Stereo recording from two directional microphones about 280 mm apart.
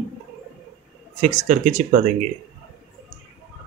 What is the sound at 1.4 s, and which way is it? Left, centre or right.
Speech, right.